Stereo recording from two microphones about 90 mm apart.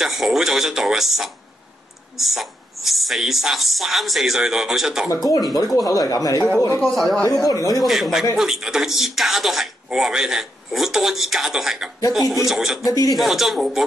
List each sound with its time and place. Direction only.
0.0 s speech: centre (ahead or behind)
5.1 s speech: 45° left (ahead or behind)
6.8 s speech: centre (ahead or behind)
7.2 s speech: 40° left (ahead or behind)
7.8 s speech: centre (ahead or behind)